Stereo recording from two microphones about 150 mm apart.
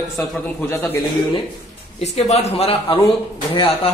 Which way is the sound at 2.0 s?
45° left (ahead or behind).